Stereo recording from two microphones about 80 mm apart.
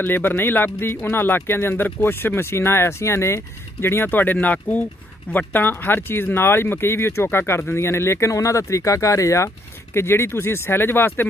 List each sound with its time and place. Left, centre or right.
0.0 s speech: left